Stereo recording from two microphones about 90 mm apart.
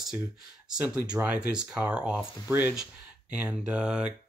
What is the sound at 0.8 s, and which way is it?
Speech, 15° right (ahead or behind).